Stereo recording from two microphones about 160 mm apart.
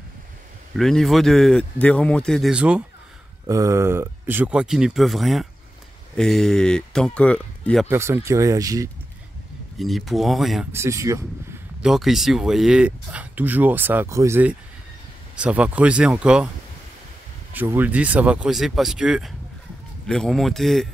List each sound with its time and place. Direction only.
0.7 s speech: centre (ahead or behind)
3.4 s speech: 20° right (ahead or behind); by 7.8 s 10° left (ahead or behind)
7.9 s speech: 15° right (ahead or behind)
9.8 s speech: centre (ahead or behind)
10.7 s speech: 15° right (ahead or behind)
11.8 s speech: centre (ahead or behind)
17.5 s speech: 10° right (ahead or behind)